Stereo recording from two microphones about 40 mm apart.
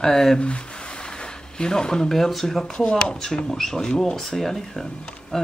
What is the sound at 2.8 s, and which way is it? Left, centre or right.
Speech, left.